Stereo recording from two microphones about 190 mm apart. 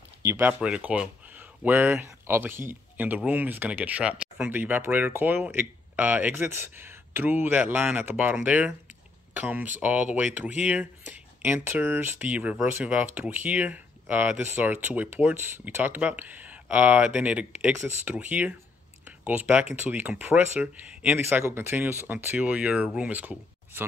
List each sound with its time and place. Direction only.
0.2 s speech: 10° right (ahead or behind)